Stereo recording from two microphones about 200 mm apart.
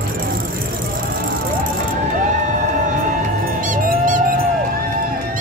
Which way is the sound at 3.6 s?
40° right (ahead or behind).